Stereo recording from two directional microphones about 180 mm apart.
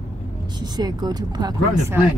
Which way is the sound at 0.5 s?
20° right (ahead or behind).